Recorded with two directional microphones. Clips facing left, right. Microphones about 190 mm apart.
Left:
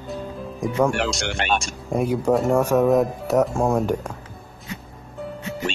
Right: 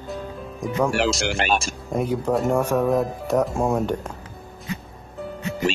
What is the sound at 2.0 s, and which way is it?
Speech, 10° left (ahead or behind).